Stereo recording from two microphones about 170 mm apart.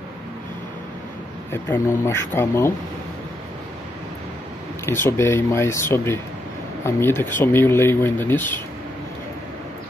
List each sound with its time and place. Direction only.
1.5 s speech: 15° left (ahead or behind)
4.8 s speech: 15° left (ahead or behind)
7.2 s speech: 15° left (ahead or behind)